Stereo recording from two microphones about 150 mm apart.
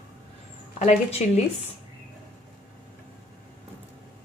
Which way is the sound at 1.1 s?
45° left (ahead or behind).